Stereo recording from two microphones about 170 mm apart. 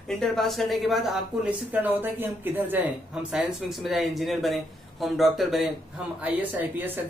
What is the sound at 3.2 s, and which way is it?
Speech, centre (ahead or behind).